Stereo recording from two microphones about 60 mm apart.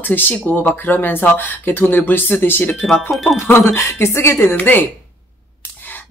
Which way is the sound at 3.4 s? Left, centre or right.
Left.